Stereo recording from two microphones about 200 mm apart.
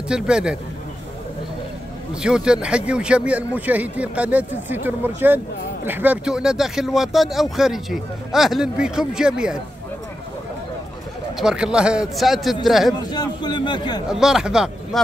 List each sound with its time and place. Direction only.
0.1 s speech: 5° right (ahead or behind)
2.2 s a man's voice: 5° right (ahead or behind)
11.3 s speech: 5° right (ahead or behind)
12.9 s a man's voice: 20° left (ahead or behind)
14.0 s speech: centre (ahead or behind)